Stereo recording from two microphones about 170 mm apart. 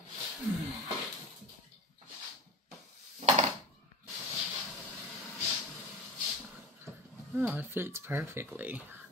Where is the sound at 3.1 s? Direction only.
40° right (ahead or behind).